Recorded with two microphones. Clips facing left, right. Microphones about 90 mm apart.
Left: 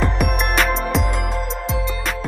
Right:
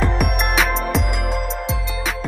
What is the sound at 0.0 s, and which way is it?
Music, centre (ahead or behind).